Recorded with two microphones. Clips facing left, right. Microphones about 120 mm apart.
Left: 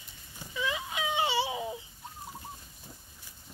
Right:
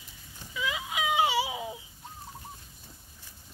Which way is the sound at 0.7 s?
90° right.